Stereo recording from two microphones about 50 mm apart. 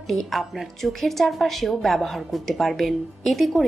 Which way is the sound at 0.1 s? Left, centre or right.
Centre.